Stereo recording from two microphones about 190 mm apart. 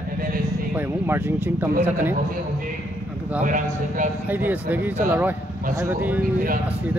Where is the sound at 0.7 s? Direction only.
10° right (ahead or behind).